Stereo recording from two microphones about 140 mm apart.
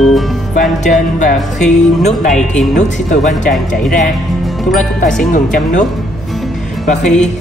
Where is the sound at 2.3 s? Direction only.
5° left (ahead or behind).